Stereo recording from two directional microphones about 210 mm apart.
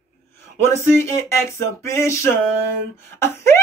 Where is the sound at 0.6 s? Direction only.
10° left (ahead or behind).